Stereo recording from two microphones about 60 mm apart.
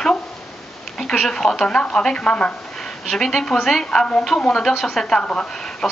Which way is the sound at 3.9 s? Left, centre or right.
Centre.